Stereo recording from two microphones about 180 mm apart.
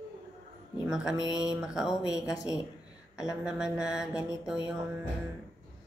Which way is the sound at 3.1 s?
5° right (ahead or behind).